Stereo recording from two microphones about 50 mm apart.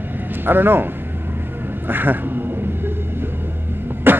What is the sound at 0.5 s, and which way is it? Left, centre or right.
Speech, right.